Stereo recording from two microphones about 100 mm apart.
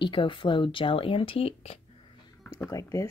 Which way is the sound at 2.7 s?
35° left (ahead or behind).